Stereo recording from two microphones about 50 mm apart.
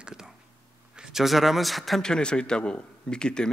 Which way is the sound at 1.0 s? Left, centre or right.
Centre.